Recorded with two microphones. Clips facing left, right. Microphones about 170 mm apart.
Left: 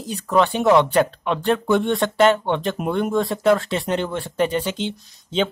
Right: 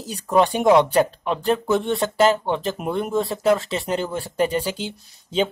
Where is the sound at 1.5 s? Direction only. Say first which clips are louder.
Left 2 dB; 5° right (ahead or behind).